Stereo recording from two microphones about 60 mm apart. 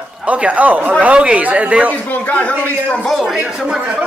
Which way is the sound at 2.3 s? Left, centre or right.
Left.